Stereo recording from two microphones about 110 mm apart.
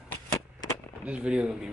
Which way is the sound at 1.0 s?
10° right (ahead or behind).